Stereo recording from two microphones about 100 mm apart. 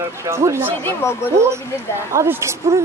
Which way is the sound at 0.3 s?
25° right (ahead or behind).